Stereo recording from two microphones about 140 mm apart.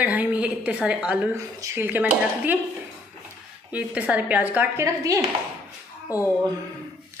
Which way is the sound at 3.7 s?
10° right (ahead or behind).